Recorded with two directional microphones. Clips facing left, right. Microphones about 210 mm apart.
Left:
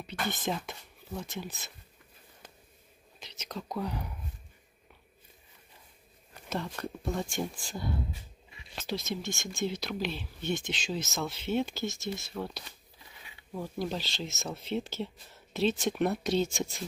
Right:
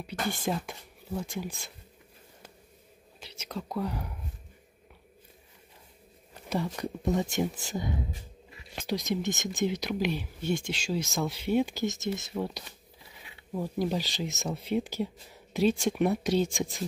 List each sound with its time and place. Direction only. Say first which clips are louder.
0.3 s speech: right 3 dB; 10° right (ahead or behind)
3.2 s speech: right 3 dB; 10° right (ahead or behind)
6.5 s speech: right 4 dB; 10° right (ahead or behind)